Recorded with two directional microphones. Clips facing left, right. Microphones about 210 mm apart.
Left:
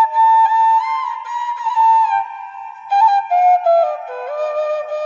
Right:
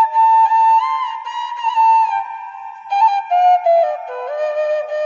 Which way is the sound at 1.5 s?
5° left (ahead or behind).